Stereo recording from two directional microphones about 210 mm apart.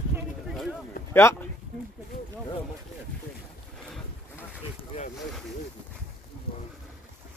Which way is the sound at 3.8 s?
Centre (ahead or behind).